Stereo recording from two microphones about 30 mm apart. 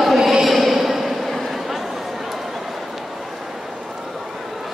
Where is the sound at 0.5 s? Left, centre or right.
Centre.